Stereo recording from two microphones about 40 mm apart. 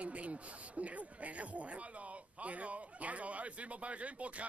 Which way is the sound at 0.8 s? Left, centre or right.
Right.